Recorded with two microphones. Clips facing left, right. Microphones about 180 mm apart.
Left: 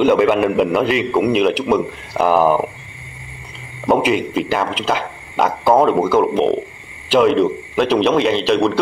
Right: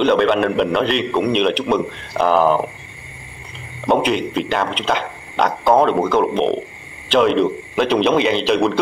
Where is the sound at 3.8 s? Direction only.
5° left (ahead or behind).